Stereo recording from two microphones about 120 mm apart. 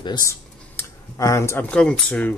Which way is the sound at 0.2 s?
25° left (ahead or behind).